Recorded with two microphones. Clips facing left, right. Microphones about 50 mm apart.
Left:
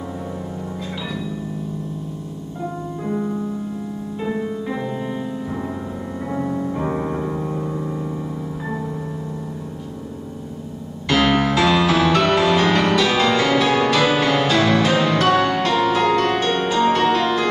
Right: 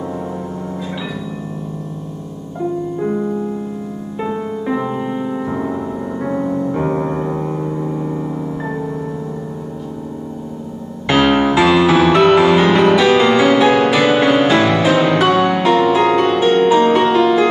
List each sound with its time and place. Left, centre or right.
4.2 s music: right
7.5 s a sound: centre
11.1 s music: right